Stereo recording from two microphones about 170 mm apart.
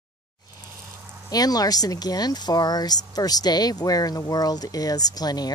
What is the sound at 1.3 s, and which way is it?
Speech, 20° left (ahead or behind).